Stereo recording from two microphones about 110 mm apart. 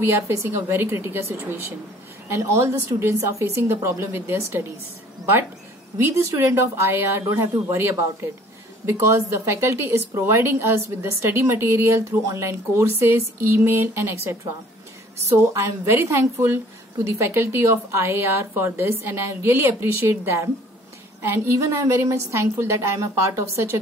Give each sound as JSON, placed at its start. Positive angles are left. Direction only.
{"t": 0.0, "sound": "a woman's voice", "side_deg": -25}
{"t": 5.9, "sound": "a woman's voice", "side_deg": -25}
{"t": 9.5, "sound": "a woman's voice", "side_deg": -25}